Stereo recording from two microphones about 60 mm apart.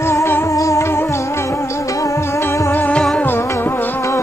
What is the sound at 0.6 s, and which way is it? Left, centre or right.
Music, left.